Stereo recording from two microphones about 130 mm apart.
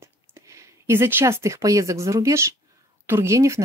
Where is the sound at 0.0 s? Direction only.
20° right (ahead or behind).